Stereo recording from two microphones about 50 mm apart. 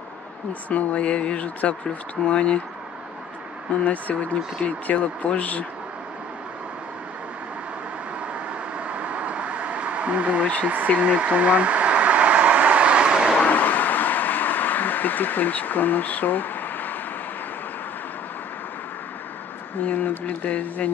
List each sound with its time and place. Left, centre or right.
0.7 s speech: left
3.8 s speech: left
8.7 s vehicle: right
11.0 s a sound: right
13.4 s a sound: left
19.8 s speech: left